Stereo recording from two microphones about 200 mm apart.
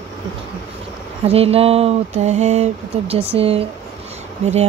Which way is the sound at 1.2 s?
30° right (ahead or behind).